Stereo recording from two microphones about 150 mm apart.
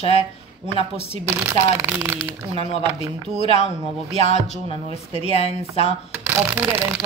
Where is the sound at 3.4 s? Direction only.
45° left (ahead or behind).